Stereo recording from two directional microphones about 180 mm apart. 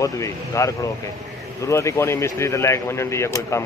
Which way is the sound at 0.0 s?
15° left (ahead or behind).